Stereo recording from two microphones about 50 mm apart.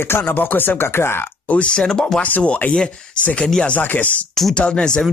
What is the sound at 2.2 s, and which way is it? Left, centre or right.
Speech, left.